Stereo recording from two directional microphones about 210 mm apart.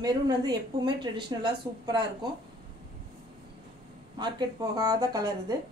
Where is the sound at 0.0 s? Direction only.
20° right (ahead or behind).